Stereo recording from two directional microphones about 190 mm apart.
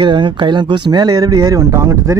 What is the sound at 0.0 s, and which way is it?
Speech, 25° right (ahead or behind).